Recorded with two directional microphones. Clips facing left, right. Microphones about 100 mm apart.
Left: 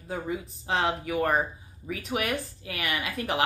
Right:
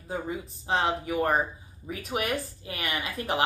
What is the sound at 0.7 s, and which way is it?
Speech, 30° right (ahead or behind).